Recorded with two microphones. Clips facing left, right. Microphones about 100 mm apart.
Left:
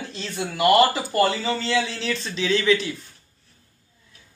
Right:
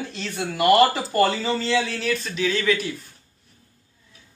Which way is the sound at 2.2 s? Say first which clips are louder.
Even; 25° left (ahead or behind).